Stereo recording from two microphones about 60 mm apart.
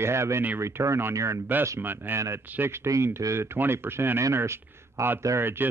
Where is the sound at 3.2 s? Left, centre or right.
Right.